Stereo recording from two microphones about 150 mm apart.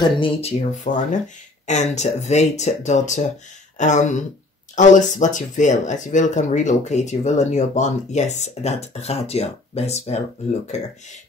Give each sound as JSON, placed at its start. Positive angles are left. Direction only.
{"t": 0.0, "sound": "speech", "side_deg": 40}
{"t": 0.9, "sound": "speech", "side_deg": 60}